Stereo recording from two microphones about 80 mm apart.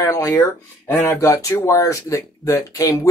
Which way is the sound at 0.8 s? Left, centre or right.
Left.